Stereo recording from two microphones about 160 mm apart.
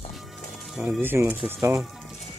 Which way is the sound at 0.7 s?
Centre (ahead or behind).